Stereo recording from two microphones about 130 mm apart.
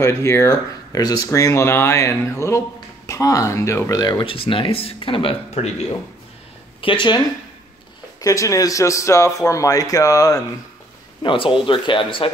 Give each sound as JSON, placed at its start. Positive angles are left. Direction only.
{"t": 0.0, "sound": "speech", "side_deg": 20}
{"t": 4.0, "sound": "speech", "side_deg": 35}
{"t": 6.8, "sound": "speech", "side_deg": 40}
{"t": 8.2, "sound": "speech", "side_deg": 25}
{"t": 11.2, "sound": "speech", "side_deg": 40}